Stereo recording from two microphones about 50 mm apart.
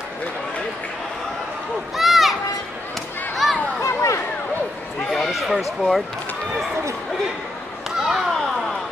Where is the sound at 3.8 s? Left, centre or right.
Left.